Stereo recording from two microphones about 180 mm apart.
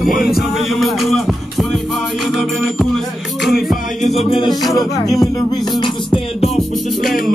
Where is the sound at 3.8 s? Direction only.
45° left (ahead or behind).